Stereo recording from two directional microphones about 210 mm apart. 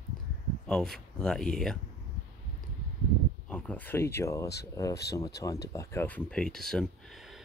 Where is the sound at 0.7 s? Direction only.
5° left (ahead or behind).